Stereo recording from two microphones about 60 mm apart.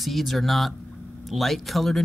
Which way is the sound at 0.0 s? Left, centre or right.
Centre.